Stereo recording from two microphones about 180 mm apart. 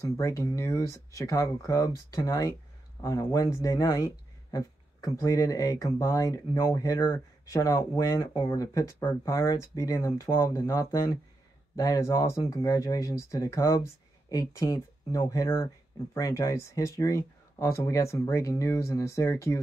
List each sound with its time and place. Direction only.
0.2 s speech: 15° left (ahead or behind)